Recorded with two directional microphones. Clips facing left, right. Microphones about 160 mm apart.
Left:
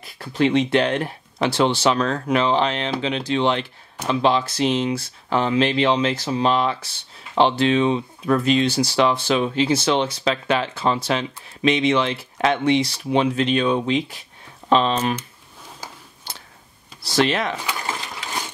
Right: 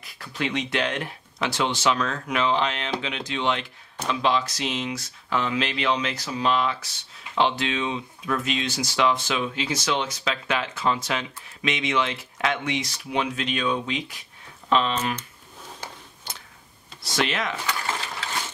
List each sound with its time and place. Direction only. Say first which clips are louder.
0.0 s speech: left 10 dB; 30° left (ahead or behind)
17.0 s speech: left 6 dB; 30° left (ahead or behind)
17.6 s a sound: left 1 dB; 15° left (ahead or behind)